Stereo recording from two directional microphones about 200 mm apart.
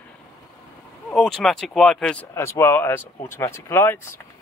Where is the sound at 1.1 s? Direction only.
5° left (ahead or behind).